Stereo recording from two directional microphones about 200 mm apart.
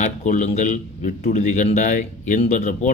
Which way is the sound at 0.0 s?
40° left (ahead or behind).